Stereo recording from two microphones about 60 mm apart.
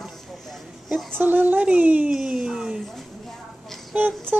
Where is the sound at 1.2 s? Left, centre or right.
Right.